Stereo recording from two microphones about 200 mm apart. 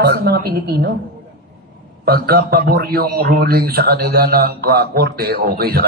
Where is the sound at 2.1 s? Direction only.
50° right (ahead or behind).